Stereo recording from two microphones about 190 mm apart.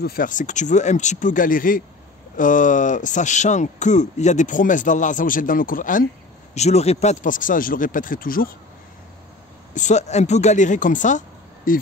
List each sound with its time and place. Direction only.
0.0 s speech: 50° left (ahead or behind)
9.8 s speech: 40° left (ahead or behind)